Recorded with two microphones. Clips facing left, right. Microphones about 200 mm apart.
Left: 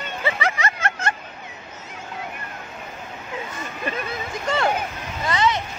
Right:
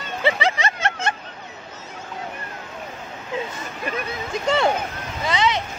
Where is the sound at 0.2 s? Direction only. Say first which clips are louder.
Right 3 dB; 25° right (ahead or behind).